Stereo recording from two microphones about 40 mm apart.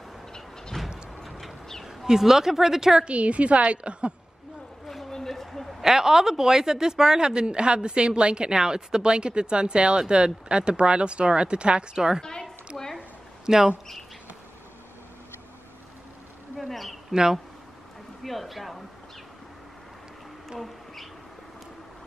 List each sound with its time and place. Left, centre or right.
0.8 s a sound: centre
2.0 s speech: centre
3.1 s a woman's voice: right
4.8 s a sound: centre
5.8 s speech: centre
12.2 s a woman's voice: centre
12.7 s a sound: centre
13.5 s speech: centre
16.5 s speech: centre
17.1 s speech: centre
18.2 s speech: centre
20.5 s insect: centre